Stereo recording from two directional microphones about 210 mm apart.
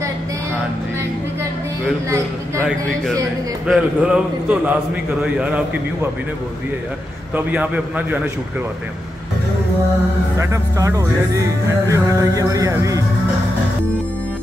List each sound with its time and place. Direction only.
3.6 s a man's voice: 5° right (ahead or behind)
7.3 s music: 5° right (ahead or behind)
10.4 s music: 15° right (ahead or behind)